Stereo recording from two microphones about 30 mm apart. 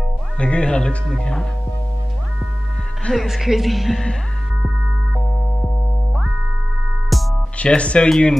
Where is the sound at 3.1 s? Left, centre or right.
Centre.